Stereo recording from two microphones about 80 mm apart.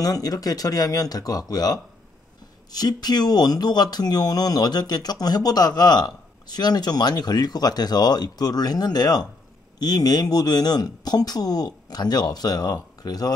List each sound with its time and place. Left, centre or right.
0.0 s speech: left